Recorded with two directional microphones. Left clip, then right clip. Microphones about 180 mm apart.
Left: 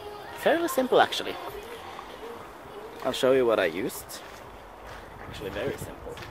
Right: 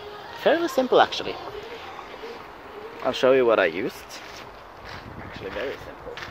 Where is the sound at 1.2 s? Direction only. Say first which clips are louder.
Right 2 dB; 15° left (ahead or behind).